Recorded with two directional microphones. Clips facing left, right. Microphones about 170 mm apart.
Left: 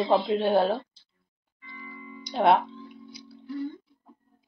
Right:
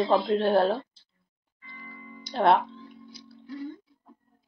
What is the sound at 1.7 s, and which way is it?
Music, 45° right (ahead or behind).